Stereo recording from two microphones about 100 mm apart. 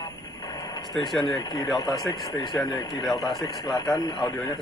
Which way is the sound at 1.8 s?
40° left (ahead or behind).